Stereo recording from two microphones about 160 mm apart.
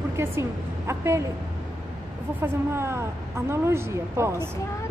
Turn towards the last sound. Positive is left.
turn(degrees=-15)  # may be behind; listen again after turning